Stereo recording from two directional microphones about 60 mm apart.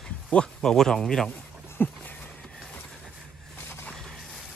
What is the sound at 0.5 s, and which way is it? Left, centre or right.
Speech, centre.